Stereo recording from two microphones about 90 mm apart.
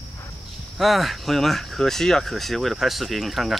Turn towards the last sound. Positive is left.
turn(degrees=0)  # may be behind; listen again after turning